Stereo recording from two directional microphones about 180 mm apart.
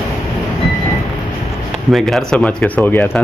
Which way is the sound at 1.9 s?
Centre (ahead or behind).